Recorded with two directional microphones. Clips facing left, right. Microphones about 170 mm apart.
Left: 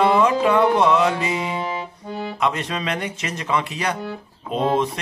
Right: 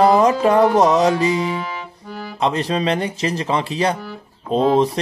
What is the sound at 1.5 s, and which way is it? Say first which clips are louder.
Music: even; 25° left (ahead or behind).